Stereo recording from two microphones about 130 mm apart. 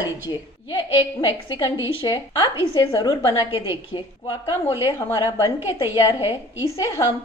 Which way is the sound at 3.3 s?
40° left (ahead or behind).